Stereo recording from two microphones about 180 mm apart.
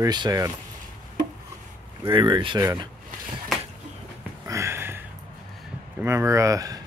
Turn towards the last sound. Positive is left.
turn(degrees=-20)  # may be behind; listen again after turning